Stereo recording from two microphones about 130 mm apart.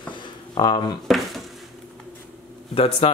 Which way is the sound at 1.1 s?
Centre (ahead or behind).